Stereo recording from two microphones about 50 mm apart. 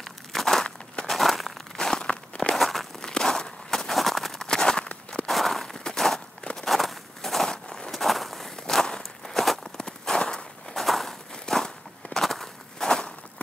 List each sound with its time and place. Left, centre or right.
0.0 s a sound: centre
1.0 s crushing: centre
1.8 s crumpling: centre
2.5 s crumpling: centre
3.0 s walk: centre
5.2 s walk: centre
7.5 s a sound: centre
7.9 s walk: centre
9.8 s walk: centre
10.8 s walk: centre